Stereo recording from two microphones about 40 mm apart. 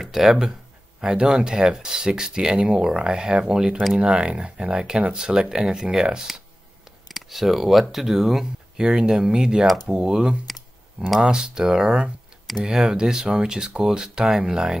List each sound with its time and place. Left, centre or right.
0.0 s speech: centre
8.7 s speech: right